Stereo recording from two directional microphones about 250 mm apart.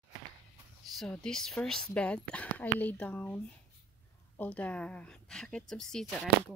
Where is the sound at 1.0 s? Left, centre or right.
Centre.